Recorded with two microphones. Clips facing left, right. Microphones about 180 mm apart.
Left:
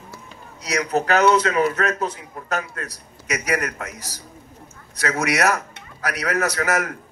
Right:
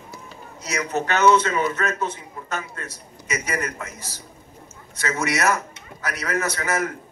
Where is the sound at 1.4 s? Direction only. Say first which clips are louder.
Left 3 dB; 35° left (ahead or behind).